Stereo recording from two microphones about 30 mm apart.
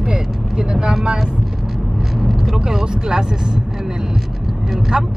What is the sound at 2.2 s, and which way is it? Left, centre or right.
Vehicle, centre.